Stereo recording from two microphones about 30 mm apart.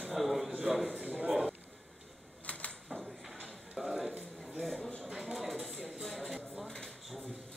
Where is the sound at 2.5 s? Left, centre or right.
Left.